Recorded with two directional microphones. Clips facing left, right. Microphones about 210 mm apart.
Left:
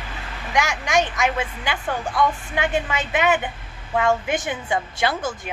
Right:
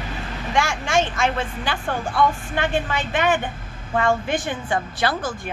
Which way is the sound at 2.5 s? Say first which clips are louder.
Even; 15° left (ahead or behind).